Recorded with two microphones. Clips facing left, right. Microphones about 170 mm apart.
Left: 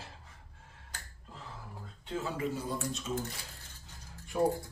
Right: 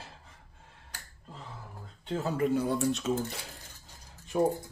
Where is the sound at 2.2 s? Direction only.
50° right (ahead or behind); by 3.1 s 70° right (ahead or behind).